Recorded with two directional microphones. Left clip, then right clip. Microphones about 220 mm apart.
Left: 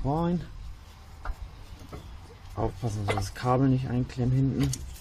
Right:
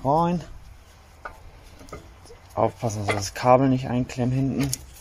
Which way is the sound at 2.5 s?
40° right (ahead or behind).